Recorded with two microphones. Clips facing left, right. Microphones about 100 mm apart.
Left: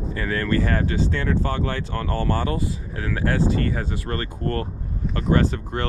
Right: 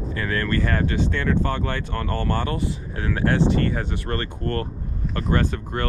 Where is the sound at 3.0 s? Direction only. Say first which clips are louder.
Right 2 dB; 30° right (ahead or behind).